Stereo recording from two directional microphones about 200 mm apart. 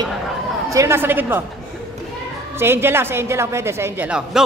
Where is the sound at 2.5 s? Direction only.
10° right (ahead or behind).